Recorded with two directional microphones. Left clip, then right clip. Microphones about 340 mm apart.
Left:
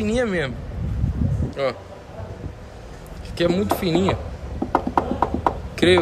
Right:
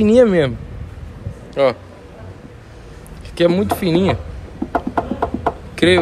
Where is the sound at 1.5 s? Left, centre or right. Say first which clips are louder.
Right 9 dB; centre.